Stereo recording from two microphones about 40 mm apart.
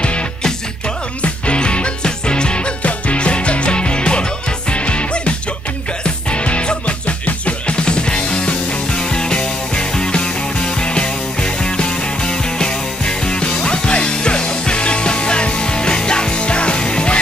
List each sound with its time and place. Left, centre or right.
0.0 s music: left